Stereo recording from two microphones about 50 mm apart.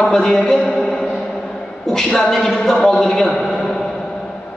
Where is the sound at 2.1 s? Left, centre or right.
Centre.